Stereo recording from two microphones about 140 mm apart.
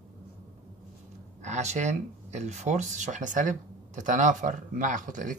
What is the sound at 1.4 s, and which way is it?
Speech, 55° right (ahead or behind).